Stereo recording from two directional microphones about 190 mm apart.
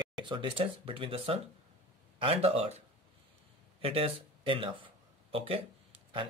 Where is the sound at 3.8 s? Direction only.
30° right (ahead or behind).